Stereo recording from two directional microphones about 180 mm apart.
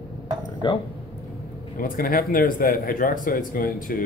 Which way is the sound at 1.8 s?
55° left (ahead or behind).